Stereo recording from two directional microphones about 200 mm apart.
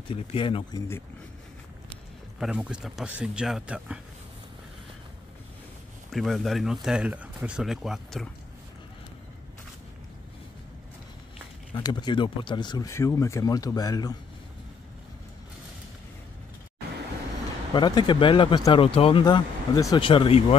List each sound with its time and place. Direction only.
0.1 s speech: 25° left (ahead or behind)
2.4 s speech: 5° right (ahead or behind)
6.1 s speech: centre (ahead or behind)
11.8 s speech: 20° left (ahead or behind)
17.7 s speech: 20° left (ahead or behind)